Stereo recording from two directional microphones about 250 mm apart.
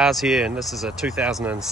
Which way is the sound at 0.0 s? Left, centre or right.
Centre.